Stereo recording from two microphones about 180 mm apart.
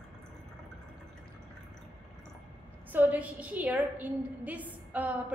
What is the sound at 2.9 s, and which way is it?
A woman's voice, 10° right (ahead or behind).